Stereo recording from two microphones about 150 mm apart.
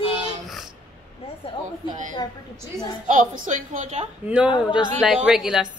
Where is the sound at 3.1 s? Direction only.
60° right (ahead or behind).